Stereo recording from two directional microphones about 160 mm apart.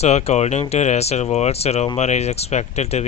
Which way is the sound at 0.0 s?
45° left (ahead or behind).